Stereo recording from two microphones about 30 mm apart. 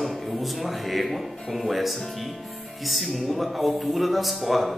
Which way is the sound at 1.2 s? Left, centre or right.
Centre.